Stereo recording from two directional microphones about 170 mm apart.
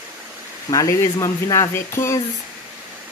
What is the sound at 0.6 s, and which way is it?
Speech, 20° left (ahead or behind).